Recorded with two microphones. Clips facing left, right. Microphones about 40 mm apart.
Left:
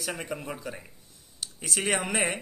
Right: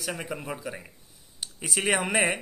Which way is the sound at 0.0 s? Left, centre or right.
Centre.